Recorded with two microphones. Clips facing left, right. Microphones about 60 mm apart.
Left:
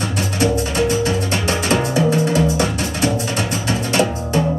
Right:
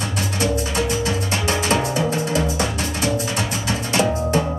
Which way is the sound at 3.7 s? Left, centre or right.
Left.